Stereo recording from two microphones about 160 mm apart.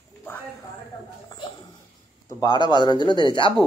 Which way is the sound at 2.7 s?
25° left (ahead or behind).